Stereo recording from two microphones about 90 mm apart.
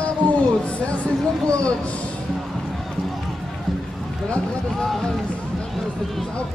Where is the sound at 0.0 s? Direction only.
15° left (ahead or behind).